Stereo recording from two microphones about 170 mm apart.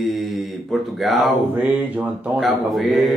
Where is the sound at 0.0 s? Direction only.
Centre (ahead or behind).